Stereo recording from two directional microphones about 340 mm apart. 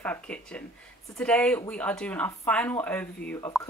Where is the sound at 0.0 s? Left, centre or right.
Centre.